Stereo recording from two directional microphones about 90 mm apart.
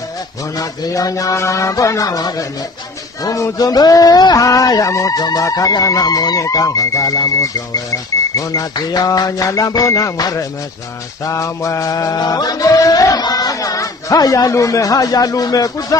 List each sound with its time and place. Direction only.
0.6 s music: 40° left (ahead or behind)
3.3 s a sound: 45° left (ahead or behind)
8.4 s music: 40° left (ahead or behind)